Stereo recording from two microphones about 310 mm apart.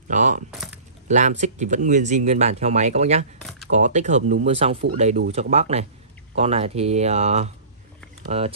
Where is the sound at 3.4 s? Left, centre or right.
Centre.